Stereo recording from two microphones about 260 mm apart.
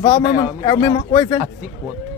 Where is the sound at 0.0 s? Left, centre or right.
Centre.